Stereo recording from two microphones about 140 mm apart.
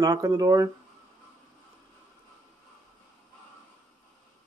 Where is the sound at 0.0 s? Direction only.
25° right (ahead or behind).